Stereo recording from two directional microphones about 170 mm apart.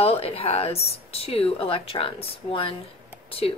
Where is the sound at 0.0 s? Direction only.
35° left (ahead or behind).